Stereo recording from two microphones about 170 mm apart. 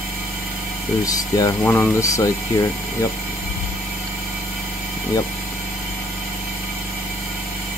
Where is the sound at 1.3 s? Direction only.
20° left (ahead or behind).